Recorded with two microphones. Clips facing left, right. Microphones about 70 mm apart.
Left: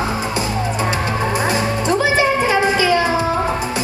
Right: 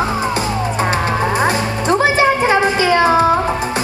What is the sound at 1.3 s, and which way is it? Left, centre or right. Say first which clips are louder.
Music: right 2 dB; right.